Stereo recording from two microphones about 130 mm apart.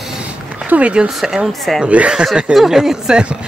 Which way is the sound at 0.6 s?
10° right (ahead or behind).